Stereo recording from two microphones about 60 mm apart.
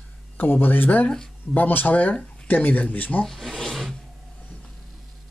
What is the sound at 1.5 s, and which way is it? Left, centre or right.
Speech, left.